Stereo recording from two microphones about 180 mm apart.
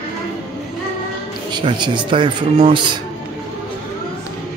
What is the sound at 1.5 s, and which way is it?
Speech, 25° right (ahead or behind).